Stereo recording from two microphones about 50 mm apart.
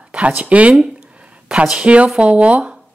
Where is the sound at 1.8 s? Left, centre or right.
Right.